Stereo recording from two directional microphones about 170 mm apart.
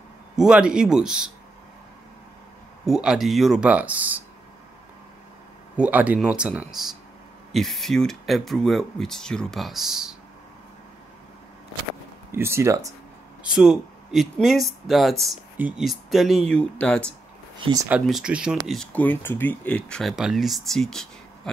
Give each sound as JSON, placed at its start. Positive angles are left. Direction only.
{"t": 0.4, "sound": "speech", "side_deg": -5}
{"t": 2.8, "sound": "speech", "side_deg": -5}
{"t": 5.8, "sound": "speech", "side_deg": -10}
{"t": 12.3, "sound": "speech", "side_deg": -15}
{"t": 13.4, "sound": "speech", "side_deg": -5}
{"t": 17.6, "sound": "speech", "side_deg": -25}
{"t": 18.0, "sound": "speech", "side_deg": -5}
{"t": 18.7, "sound": "speech", "side_deg": 5}